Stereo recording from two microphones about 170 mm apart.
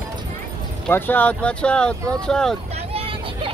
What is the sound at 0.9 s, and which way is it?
Speech, 10° left (ahead or behind).